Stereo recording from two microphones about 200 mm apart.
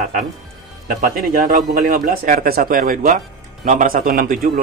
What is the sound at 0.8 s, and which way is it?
A man's voice, 45° right (ahead or behind).